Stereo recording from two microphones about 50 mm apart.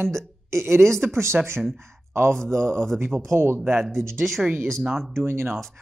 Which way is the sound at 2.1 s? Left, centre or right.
Right.